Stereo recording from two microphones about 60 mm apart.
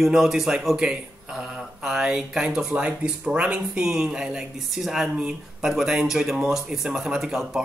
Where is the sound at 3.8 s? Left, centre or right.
Centre.